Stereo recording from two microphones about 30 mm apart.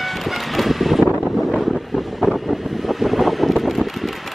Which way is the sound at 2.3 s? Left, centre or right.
Centre.